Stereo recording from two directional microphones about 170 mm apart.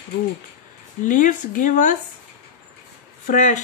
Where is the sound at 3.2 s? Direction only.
45° left (ahead or behind).